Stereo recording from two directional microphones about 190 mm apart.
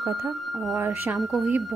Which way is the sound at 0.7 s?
10° right (ahead or behind).